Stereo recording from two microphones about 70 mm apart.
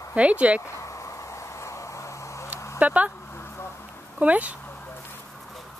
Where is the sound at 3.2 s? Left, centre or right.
Left.